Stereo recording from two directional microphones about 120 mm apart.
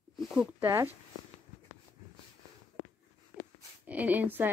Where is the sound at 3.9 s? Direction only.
15° right (ahead or behind).